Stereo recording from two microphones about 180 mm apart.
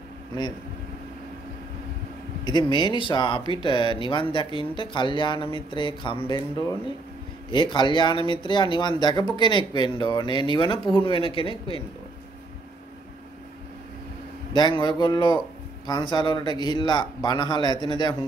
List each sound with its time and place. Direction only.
2.4 s speech: 25° left (ahead or behind)
14.5 s speech: 25° left (ahead or behind)